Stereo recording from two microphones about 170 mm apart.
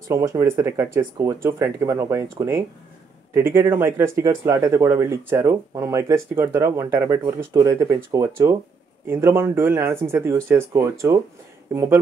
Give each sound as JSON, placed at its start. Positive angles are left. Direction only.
{"t": 0.1, "sound": "speech", "side_deg": -15}